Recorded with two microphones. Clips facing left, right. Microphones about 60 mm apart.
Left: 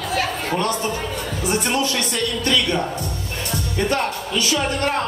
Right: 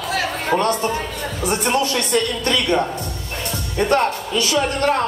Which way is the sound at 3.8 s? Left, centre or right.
Right.